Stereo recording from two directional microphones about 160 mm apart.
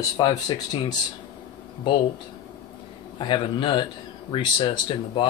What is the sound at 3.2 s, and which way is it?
A man's voice, 30° left (ahead or behind).